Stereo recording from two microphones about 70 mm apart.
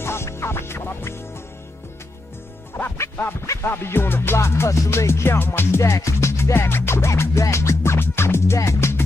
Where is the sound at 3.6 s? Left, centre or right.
Left.